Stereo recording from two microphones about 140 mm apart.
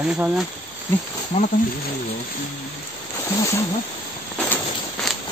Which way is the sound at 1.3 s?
55° left (ahead or behind).